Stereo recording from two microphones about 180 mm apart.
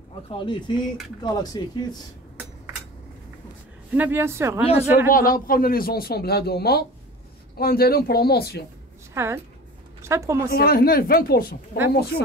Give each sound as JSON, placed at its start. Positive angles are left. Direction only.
{"t": 0.3, "sound": "speech", "side_deg": 25}
{"t": 3.9, "sound": "speech", "side_deg": -10}
{"t": 5.0, "sound": "a man's voice", "side_deg": 50}
{"t": 9.1, "sound": "a woman's voice", "side_deg": -15}
{"t": 10.5, "sound": "a man's voice", "side_deg": 60}